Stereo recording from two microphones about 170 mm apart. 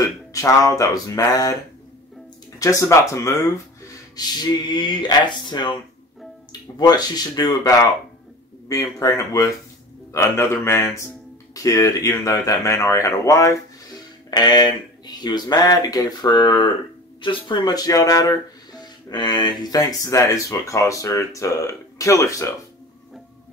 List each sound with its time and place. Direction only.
0.3 s speech: 20° left (ahead or behind)
2.6 s speech: 20° left (ahead or behind)
4.4 s speech: 25° left (ahead or behind)
6.8 s speech: 25° left (ahead or behind)